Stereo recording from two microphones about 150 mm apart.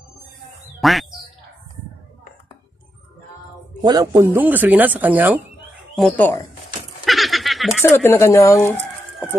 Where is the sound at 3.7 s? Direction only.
25° right (ahead or behind).